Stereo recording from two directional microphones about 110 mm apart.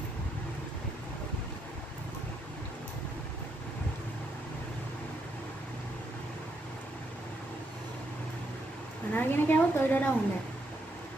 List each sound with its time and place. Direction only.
9.1 s a woman's voice: 20° left (ahead or behind)